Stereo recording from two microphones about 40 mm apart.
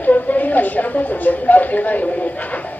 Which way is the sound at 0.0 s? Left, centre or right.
Left.